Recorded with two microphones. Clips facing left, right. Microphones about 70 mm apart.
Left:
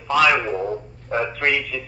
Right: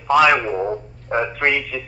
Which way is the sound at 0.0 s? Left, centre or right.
Centre.